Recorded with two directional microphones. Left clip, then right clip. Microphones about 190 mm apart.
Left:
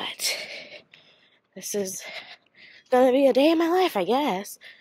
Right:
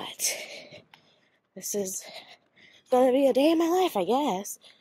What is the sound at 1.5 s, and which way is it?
A woman's voice, 5° right (ahead or behind).